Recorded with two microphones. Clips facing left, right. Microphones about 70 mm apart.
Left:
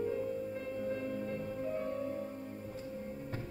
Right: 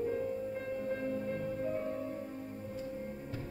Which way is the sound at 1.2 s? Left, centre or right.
Centre.